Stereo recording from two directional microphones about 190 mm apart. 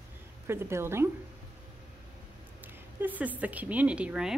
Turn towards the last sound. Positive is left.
turn(degrees=-5)  # may be behind; listen again after turning